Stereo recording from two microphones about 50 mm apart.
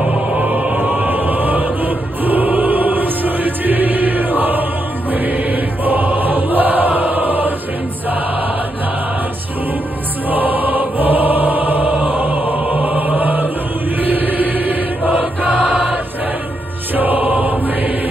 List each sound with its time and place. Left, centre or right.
0.4 s music: right
5.1 s choir: right
10.3 s music: right
12.2 s choir: right
14.0 s chant: right
15.6 s choir: centre
16.9 s music: right